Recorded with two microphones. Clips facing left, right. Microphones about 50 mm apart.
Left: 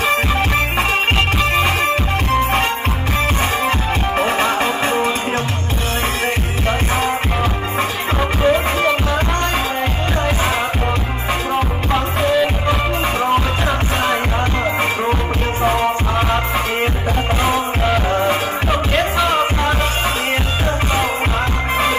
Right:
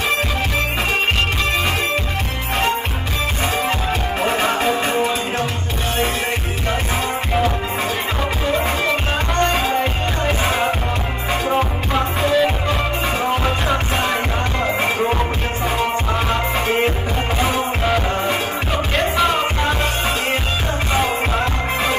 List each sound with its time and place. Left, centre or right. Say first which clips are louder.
11.9 s music: left 2 dB; centre
17.8 s music: left 4 dB; centre